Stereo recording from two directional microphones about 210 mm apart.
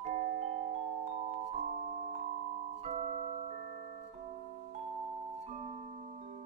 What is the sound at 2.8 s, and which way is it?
Music, 30° right (ahead or behind).